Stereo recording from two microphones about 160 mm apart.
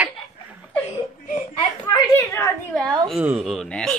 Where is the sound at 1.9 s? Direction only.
15° left (ahead or behind).